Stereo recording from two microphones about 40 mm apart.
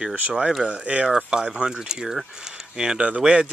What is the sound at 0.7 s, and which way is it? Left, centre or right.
Speech, right.